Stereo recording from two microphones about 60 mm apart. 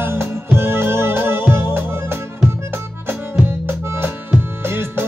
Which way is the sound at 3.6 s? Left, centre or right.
Right.